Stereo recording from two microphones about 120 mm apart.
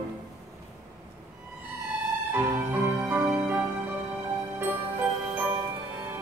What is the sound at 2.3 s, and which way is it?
Music, 15° right (ahead or behind).